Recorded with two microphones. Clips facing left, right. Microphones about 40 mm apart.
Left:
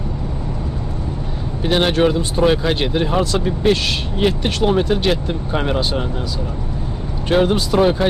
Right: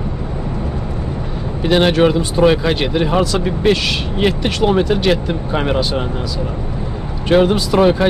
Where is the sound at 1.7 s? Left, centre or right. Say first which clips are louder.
Right 3 dB; right.